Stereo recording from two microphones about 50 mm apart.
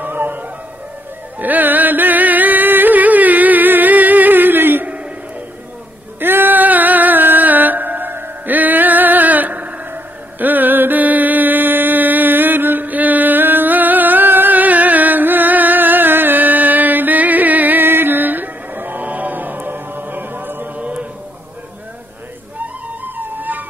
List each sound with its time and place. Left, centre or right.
0.0 s howl: right
1.4 s music: right
6.1 s music: right
20.7 s chant: right
23.0 s music: right